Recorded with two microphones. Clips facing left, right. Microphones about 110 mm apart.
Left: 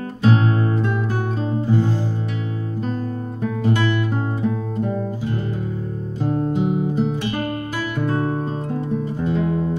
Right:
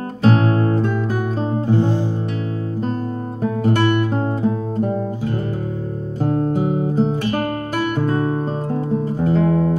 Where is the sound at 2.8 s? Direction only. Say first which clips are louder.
Right 1 dB; 40° right (ahead or behind).